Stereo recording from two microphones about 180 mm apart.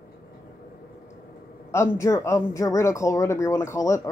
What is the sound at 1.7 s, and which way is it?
Speech, 15° left (ahead or behind).